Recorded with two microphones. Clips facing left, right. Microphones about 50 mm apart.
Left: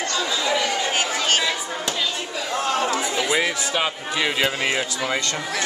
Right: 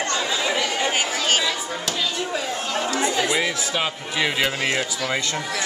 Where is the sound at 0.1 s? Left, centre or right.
Right.